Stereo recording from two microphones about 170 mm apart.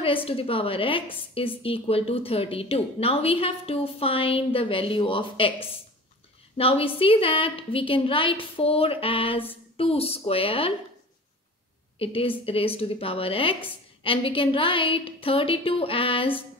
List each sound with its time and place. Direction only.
0.0 s a woman's voice: 35° left (ahead or behind)
12.0 s a woman's voice: 35° left (ahead or behind)